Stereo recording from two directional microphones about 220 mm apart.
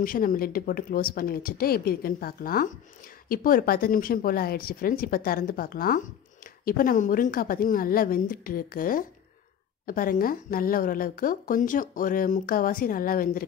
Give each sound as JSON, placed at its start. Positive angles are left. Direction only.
{"t": 0.0, "sound": "speech", "side_deg": 40}